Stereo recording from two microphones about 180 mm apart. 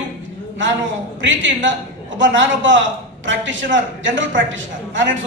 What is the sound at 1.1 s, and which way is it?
A man's voice, 90° right.